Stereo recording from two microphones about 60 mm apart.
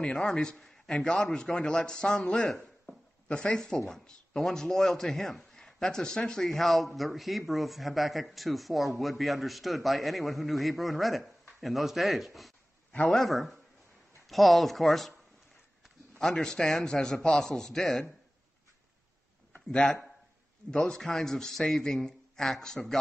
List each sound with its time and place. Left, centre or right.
0.0 s a man's voice: centre
16.2 s a man's voice: centre
19.5 s a man's voice: centre